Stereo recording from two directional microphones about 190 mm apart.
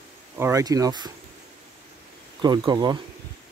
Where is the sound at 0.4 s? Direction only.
15° right (ahead or behind).